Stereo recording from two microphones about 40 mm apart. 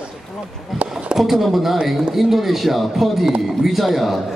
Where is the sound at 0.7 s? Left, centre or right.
Centre.